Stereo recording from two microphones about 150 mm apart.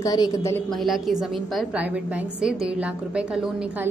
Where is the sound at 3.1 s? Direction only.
5° right (ahead or behind).